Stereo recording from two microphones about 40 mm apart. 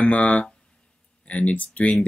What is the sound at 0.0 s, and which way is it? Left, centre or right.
Speech, left.